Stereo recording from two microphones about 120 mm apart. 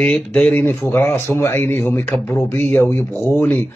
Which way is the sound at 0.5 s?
20° left (ahead or behind).